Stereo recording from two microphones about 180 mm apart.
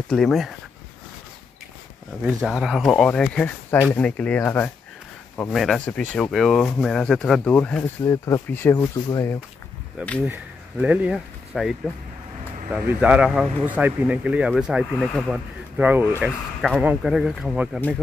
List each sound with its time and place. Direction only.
0.1 s speech: centre (ahead or behind)
2.2 s speech: 5° right (ahead or behind)
5.5 s speech: centre (ahead or behind)
8.0 s speech: 15° left (ahead or behind)
10.2 s speech: 10° right (ahead or behind)